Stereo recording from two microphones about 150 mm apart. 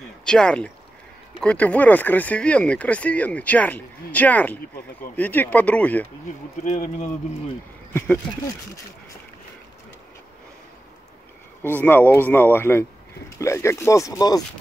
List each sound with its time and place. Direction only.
0.2 s speech: 5° left (ahead or behind)
6.6 s speech: 50° left (ahead or behind)
7.9 s speech: 15° left (ahead or behind)
11.8 s speech: 15° left (ahead or behind)